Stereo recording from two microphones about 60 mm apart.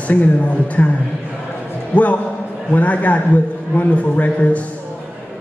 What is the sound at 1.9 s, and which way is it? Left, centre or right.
Speech, left.